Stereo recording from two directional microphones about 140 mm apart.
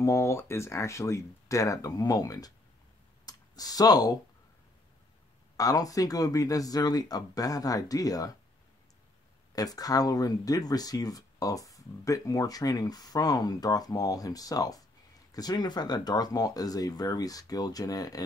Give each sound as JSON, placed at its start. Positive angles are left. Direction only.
{"t": 0.0, "sound": "speech", "side_deg": 20}
{"t": 3.3, "sound": "a sound", "side_deg": 25}
{"t": 5.6, "sound": "speech", "side_deg": 25}
{"t": 9.6, "sound": "speech", "side_deg": 25}